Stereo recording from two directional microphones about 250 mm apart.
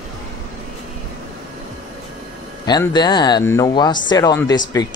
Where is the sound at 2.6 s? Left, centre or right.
Centre.